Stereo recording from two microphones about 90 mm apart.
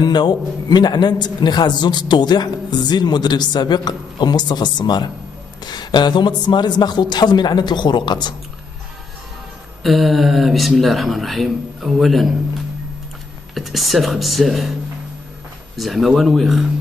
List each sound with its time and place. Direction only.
0.0 s a man's voice: 55° left (ahead or behind)
9.8 s speech: centre (ahead or behind)
13.6 s speech: centre (ahead or behind)
15.7 s speech: centre (ahead or behind)